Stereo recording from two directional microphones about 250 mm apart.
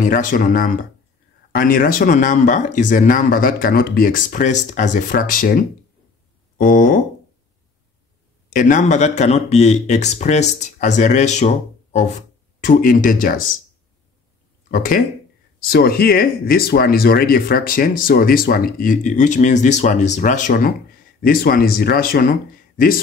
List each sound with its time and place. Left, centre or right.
0.0 s speech: left
8.5 s speech: left
14.7 s speech: left